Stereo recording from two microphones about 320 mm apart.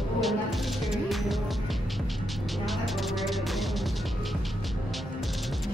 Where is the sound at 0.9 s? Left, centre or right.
Centre.